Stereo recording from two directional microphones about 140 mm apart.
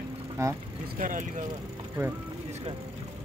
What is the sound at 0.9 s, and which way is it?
Speech, 70° right (ahead or behind).